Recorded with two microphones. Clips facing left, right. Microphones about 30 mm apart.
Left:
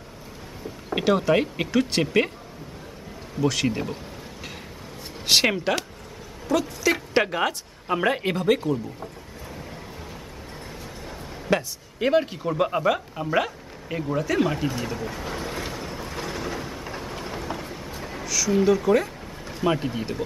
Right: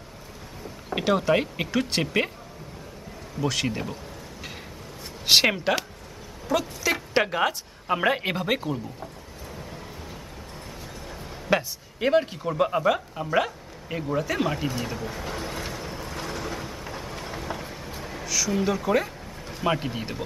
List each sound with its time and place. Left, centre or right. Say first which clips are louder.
0.8 s a woman's voice: left 2 dB; centre
3.3 s a woman's voice: left 3 dB; centre
5.2 s a woman's voice: right 1 dB; centre
11.5 s a sound: even; centre
18.2 s a sound: left 1 dB; centre
18.6 s speech: left 6 dB; centre